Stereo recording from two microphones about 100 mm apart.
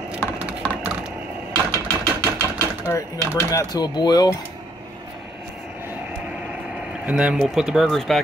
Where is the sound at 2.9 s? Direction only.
30° left (ahead or behind).